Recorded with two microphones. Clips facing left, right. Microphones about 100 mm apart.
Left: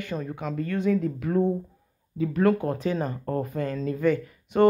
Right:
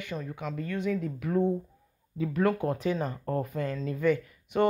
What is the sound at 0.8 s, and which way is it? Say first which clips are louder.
Speech: left 7 dB; 10° right (ahead or behind).